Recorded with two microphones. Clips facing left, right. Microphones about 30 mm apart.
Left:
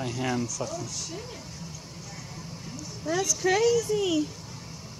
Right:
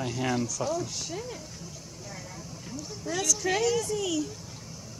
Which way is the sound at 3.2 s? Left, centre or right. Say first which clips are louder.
Left 3 dB; centre.